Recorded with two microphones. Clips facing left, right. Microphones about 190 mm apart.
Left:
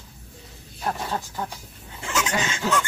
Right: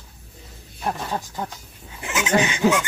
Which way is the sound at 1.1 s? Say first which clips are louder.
Right 1 dB; 15° right (ahead or behind).